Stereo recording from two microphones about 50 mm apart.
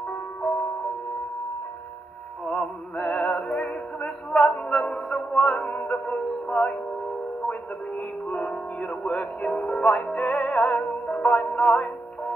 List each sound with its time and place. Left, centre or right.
2.4 s music: centre
3.0 s music: left
3.4 s music: centre
5.3 s music: left